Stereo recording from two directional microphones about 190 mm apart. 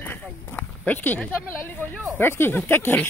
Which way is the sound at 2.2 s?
10° left (ahead or behind).